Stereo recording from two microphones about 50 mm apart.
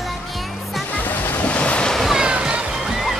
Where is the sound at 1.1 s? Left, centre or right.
Left.